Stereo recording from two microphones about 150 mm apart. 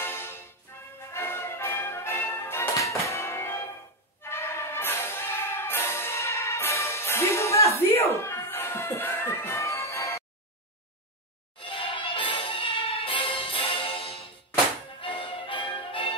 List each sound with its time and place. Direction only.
0.0 s music: 15° left (ahead or behind)
11.6 s music: 35° left (ahead or behind)